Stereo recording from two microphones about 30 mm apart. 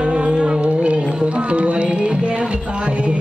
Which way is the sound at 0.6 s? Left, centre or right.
Right.